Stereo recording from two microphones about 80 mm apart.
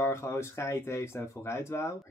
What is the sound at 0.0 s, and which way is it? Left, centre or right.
Speech, left.